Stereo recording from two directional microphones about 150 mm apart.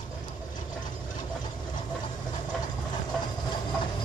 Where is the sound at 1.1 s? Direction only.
30° left (ahead or behind).